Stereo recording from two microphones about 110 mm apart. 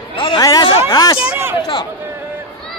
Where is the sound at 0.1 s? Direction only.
45° left (ahead or behind).